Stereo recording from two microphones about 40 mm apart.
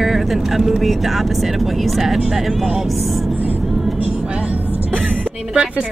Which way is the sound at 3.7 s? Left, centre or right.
Centre.